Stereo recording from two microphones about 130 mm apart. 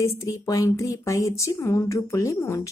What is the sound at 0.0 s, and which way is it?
A woman's voice, 25° left (ahead or behind).